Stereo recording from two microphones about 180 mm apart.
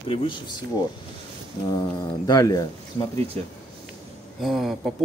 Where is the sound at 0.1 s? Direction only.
30° left (ahead or behind).